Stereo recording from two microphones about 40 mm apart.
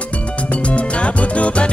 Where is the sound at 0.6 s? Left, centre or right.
Left.